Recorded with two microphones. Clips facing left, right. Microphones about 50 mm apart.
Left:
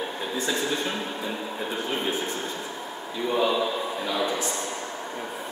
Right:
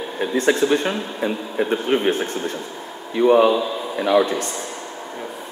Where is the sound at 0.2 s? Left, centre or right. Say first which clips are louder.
Right 11 dB; right.